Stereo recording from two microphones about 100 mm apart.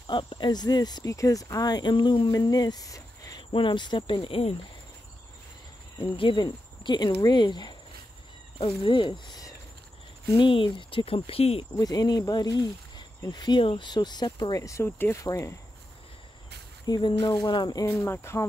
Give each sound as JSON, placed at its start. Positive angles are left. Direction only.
{"t": 0.0, "sound": "speech", "side_deg": 55}
{"t": 3.5, "sound": "speech", "side_deg": 50}
{"t": 5.9, "sound": "speech", "side_deg": 50}
{"t": 10.3, "sound": "speech", "side_deg": 55}
{"t": 11.7, "sound": "speech", "side_deg": 40}
{"t": 14.6, "sound": "speech", "side_deg": 30}
{"t": 16.8, "sound": "speech", "side_deg": 40}
{"t": 17.9, "sound": "speech", "side_deg": 25}